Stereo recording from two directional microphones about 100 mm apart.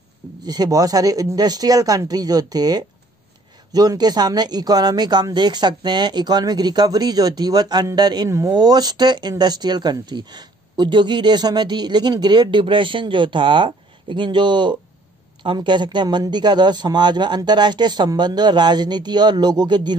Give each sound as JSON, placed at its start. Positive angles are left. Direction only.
{"t": 0.5, "sound": "speech", "side_deg": -40}